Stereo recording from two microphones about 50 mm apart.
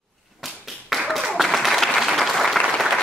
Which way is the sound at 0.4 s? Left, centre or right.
Centre.